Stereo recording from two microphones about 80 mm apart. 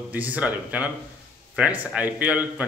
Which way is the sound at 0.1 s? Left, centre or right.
Centre.